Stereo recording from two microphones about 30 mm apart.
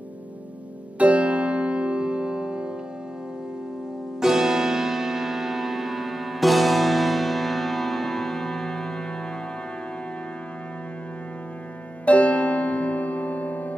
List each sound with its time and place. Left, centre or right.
0.9 s music: right
4.2 s music: centre
12.0 s music: left